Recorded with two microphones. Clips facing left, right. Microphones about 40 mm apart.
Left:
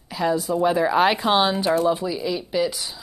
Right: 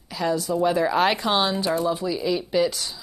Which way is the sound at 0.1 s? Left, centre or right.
Centre.